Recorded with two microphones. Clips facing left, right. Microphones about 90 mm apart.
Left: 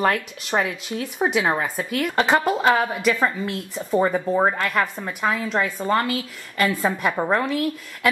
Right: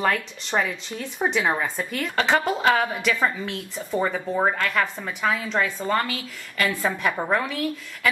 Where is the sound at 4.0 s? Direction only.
15° left (ahead or behind).